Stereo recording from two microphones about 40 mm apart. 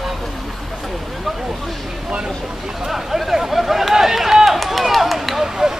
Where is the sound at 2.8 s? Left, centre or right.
Centre.